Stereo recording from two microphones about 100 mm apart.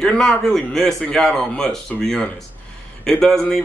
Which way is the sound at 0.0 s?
5° left (ahead or behind).